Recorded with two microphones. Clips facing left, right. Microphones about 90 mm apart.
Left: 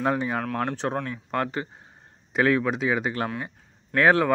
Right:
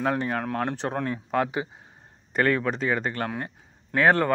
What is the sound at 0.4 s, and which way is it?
Speech, 10° right (ahead or behind).